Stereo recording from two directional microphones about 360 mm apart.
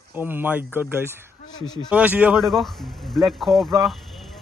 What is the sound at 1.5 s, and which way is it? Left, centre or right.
Speech, centre.